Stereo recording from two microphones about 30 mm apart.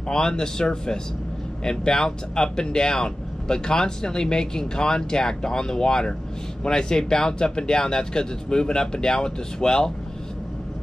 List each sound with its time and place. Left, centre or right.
0.1 s speech: left